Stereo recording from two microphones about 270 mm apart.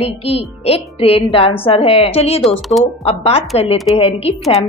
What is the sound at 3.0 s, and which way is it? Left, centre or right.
Speech, left.